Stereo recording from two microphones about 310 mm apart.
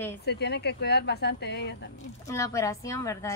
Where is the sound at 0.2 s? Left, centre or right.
Left.